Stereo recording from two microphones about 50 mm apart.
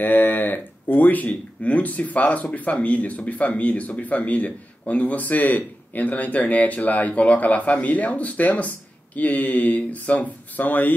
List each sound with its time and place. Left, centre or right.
0.0 s speech: left